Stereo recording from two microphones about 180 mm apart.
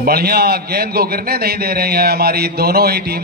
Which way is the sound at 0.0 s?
55° right (ahead or behind).